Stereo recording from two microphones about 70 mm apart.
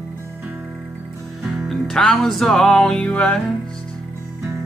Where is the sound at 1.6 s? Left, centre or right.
Centre.